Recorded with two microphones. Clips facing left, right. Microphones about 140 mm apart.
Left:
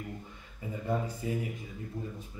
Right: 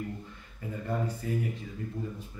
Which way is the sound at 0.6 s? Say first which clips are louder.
Even; 15° left (ahead or behind).